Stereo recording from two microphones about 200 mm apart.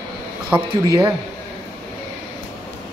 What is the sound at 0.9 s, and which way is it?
Speech, 10° right (ahead or behind).